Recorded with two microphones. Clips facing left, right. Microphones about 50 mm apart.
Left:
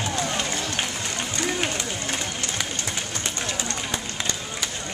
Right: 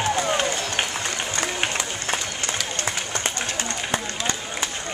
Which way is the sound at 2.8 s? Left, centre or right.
Right.